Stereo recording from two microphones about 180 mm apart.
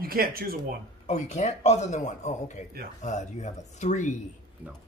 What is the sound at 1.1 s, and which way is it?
A man's voice, 40° left (ahead or behind).